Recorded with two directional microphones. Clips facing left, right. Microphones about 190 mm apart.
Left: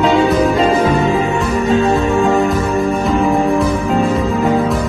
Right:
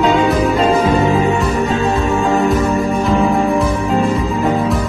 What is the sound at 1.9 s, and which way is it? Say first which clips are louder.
Music: left 2 dB; centre (ahead or behind).